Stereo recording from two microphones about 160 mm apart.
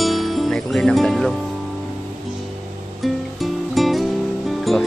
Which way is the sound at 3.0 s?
Centre (ahead or behind).